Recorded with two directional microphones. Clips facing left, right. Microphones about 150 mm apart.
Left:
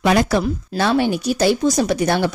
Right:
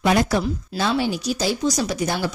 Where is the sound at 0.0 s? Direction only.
90° left.